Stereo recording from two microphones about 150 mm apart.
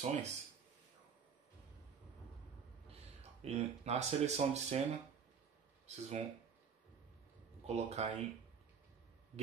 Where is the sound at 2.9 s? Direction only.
45° right (ahead or behind).